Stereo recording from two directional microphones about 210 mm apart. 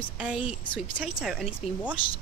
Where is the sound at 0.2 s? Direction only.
5° right (ahead or behind).